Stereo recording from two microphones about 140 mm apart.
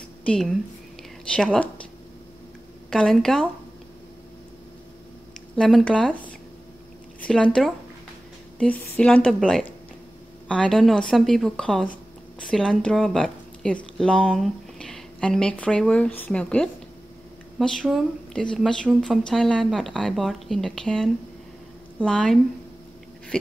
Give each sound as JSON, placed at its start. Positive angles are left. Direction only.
{"t": 0.2, "sound": "a woman's voice", "side_deg": 5}
{"t": 2.9, "sound": "a woman's voice", "side_deg": 5}
{"t": 5.6, "sound": "a woman's voice", "side_deg": 5}
{"t": 9.4, "sound": "speech", "side_deg": -5}
{"t": 10.5, "sound": "a woman's voice", "side_deg": 5}